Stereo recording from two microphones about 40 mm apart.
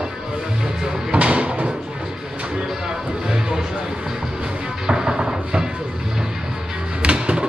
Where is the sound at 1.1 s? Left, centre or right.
Right.